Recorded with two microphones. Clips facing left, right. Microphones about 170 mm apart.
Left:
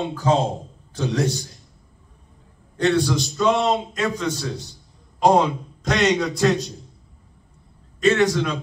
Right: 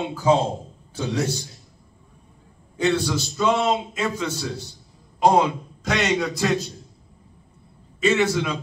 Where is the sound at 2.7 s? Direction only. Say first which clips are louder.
Left 2 dB; 10° right (ahead or behind).